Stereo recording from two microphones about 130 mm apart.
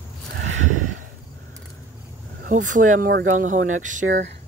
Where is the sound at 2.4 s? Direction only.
80° right.